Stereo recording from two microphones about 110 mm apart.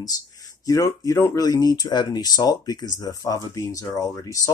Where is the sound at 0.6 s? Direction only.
30° left (ahead or behind).